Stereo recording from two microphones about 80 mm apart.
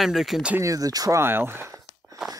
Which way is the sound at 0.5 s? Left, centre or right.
Right.